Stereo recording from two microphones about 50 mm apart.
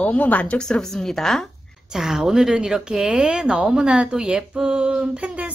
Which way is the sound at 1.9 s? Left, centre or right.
Centre.